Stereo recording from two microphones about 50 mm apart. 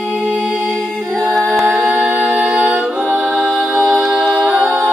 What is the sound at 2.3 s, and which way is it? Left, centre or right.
Music, right.